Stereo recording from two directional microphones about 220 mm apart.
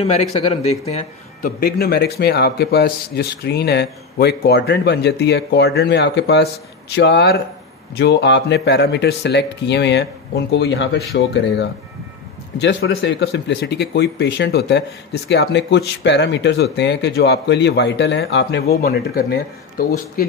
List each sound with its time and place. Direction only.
0.0 s speech: 30° left (ahead or behind)
1.6 s a man's voice: 45° left (ahead or behind)